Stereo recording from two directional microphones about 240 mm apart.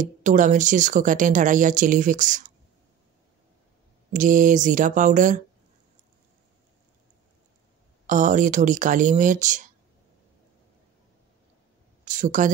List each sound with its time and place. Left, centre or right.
0.0 s speech: right
4.1 s speech: right
8.1 s speech: right
12.0 s a sound: right